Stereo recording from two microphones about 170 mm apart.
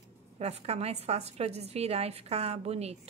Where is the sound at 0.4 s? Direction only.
40° right (ahead or behind).